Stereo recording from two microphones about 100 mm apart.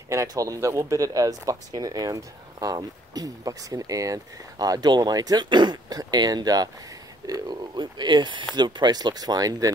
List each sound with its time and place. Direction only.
0.1 s speech: 35° right (ahead or behind)